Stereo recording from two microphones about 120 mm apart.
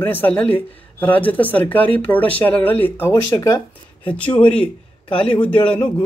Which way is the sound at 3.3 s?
30° left (ahead or behind).